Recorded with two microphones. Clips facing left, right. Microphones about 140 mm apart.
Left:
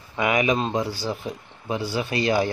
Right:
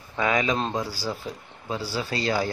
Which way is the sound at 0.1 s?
15° left (ahead or behind).